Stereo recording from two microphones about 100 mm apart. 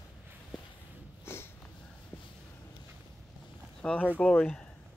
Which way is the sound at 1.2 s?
25° left (ahead or behind).